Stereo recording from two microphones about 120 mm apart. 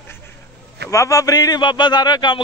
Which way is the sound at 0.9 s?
25° left (ahead or behind).